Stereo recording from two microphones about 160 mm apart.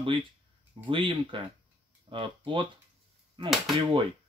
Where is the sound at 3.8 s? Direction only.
30° right (ahead or behind).